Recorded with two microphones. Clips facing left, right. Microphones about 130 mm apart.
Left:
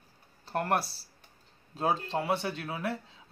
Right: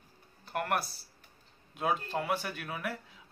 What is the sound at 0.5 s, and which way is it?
Speech, 30° left (ahead or behind).